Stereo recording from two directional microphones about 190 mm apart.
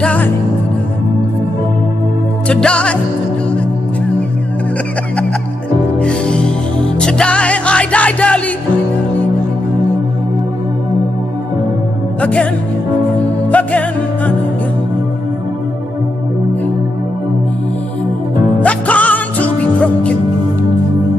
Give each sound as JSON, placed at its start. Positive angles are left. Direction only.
{"t": 0.0, "sound": "music", "side_deg": 5}
{"t": 2.4, "sound": "music", "side_deg": 5}
{"t": 5.9, "sound": "music", "side_deg": 5}
{"t": 12.2, "sound": "music", "side_deg": 5}
{"t": 13.5, "sound": "music", "side_deg": 5}
{"t": 18.6, "sound": "music", "side_deg": 5}